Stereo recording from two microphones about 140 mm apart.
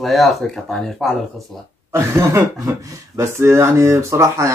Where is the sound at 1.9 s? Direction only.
20° right (ahead or behind).